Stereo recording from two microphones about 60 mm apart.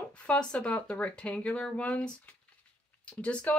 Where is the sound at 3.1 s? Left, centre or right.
Left.